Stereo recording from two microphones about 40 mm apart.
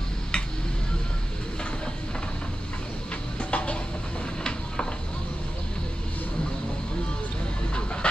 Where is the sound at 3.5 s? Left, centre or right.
Left.